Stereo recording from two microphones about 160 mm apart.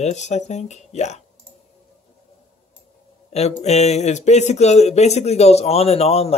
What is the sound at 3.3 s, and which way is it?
Speech, 40° left (ahead or behind).